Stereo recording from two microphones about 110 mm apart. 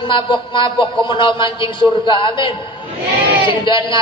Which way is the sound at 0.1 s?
50° left (ahead or behind).